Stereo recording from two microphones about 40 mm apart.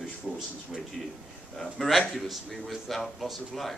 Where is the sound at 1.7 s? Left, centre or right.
Centre.